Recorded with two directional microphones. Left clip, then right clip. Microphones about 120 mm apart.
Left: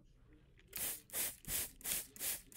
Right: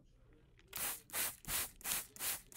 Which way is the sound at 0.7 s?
Centre (ahead or behind).